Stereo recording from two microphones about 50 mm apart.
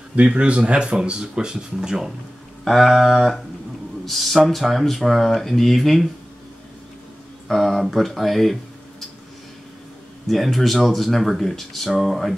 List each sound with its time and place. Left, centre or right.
0.1 s speech: right; by 6.0 s centre
7.4 s speech: centre
10.2 s speech: centre